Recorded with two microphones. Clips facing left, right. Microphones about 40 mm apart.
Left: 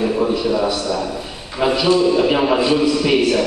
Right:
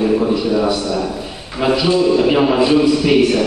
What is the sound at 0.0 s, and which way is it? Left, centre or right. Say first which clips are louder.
A man's voice: right 2 dB; centre.